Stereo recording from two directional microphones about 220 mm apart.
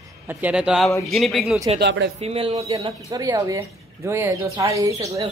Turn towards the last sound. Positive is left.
turn(degrees=-15)  # may be behind; listen again after turning